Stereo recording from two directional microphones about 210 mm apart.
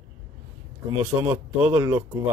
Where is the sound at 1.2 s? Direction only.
10° right (ahead or behind).